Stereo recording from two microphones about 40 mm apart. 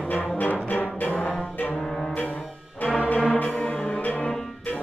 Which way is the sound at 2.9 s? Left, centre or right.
Left.